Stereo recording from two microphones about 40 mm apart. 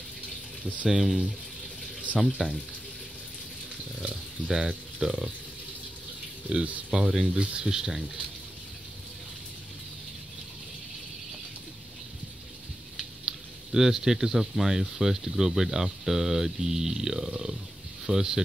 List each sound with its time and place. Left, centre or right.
0.8 s speech: centre
4.1 s speech: centre
6.5 s speech: right
7.3 s speech: right
7.6 s speech: centre
12.9 s speech: centre